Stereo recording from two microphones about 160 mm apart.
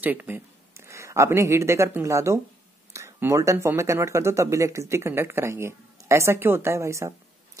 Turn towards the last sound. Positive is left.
turn(degrees=-20)  # may be behind; listen again after turning